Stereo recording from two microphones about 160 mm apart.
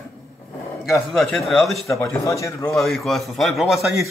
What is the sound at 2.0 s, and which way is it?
Speech, 20° left (ahead or behind).